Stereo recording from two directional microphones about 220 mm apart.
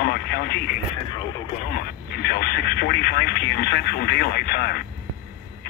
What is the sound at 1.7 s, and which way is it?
Speech, 45° left (ahead or behind).